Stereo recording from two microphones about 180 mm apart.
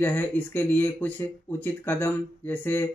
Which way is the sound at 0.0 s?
10° left (ahead or behind).